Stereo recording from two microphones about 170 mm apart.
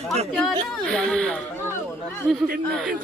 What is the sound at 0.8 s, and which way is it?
Speech, 5° left (ahead or behind).